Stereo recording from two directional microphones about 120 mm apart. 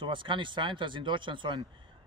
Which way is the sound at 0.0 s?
45° right (ahead or behind).